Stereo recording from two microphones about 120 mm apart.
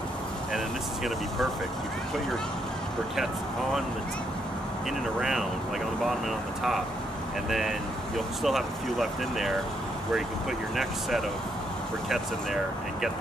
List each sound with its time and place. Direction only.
5.2 s speech: centre (ahead or behind)
7.4 s speech: centre (ahead or behind)
10.8 s speech: centre (ahead or behind)